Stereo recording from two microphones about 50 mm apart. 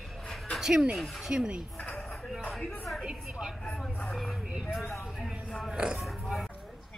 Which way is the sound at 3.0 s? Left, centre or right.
Centre.